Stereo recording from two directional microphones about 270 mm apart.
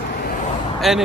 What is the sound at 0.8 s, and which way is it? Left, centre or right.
Speech, centre.